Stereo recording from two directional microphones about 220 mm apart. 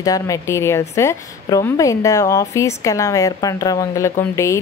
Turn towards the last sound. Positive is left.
turn(degrees=15)  # may be behind; listen again after turning